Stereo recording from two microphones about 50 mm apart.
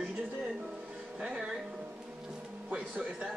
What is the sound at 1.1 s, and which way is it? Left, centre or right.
Music, centre.